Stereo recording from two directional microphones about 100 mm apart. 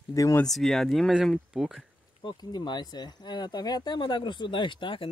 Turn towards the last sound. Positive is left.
turn(degrees=55)  # may be behind; listen again after turning